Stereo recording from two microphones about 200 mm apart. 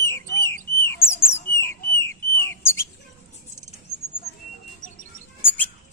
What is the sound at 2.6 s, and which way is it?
Bird, 15° left (ahead or behind).